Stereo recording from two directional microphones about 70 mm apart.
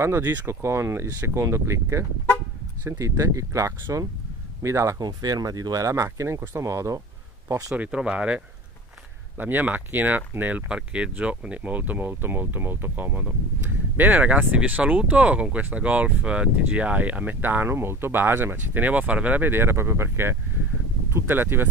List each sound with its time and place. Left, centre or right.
0.0 s speech: right
0.6 s speech: right
4.9 s speech: right
7.7 s speech: centre
9.4 s speech: right